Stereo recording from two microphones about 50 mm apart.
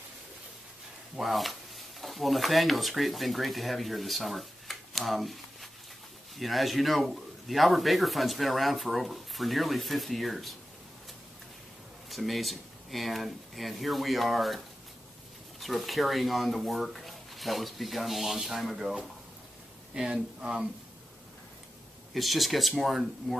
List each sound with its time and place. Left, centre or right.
1.1 s a man's voice: centre
12.1 s speech: centre
15.6 s a man's voice: centre
22.1 s a man's voice: centre